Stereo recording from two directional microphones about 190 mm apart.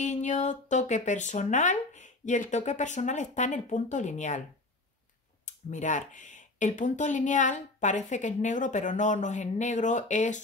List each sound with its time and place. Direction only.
0.0 s speech: 40° left (ahead or behind)
5.4 s speech: 40° left (ahead or behind)